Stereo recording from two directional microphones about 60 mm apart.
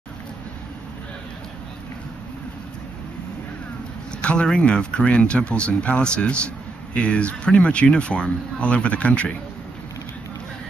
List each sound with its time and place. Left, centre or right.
4.2 s speech: centre